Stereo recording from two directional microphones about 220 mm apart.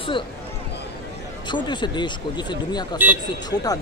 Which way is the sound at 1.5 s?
20° left (ahead or behind).